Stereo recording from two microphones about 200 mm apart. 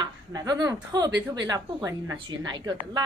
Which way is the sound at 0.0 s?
20° right (ahead or behind).